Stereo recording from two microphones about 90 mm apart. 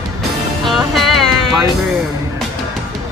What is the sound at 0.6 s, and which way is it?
Music, centre (ahead or behind).